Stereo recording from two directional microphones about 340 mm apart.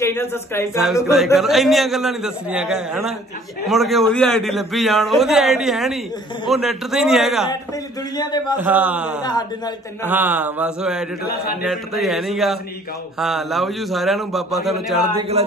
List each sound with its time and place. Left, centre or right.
0.0 s speech: centre
8.2 s a man's voice: centre
8.5 s speech: centre
11.2 s a man's voice: left
11.6 s speech: centre